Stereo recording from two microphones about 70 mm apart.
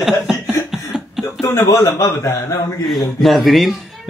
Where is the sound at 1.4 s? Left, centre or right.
Left.